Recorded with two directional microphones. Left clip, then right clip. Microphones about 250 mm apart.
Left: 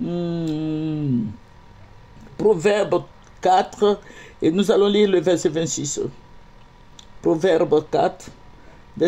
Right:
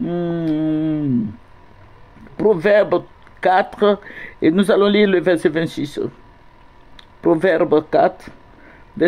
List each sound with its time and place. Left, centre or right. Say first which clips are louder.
0.0 s mantra: right 4 dB; centre
2.3 s speech: right 4 dB; centre
7.2 s speech: right 3 dB; centre